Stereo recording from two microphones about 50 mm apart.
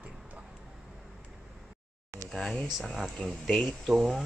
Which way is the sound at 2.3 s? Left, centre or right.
Centre.